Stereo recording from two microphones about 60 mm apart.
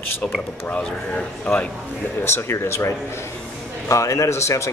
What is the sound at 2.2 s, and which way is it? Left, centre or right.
Speech, left.